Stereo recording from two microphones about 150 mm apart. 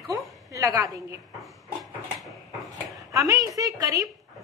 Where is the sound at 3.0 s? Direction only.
25° right (ahead or behind).